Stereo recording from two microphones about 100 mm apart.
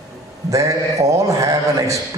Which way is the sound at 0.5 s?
35° right (ahead or behind).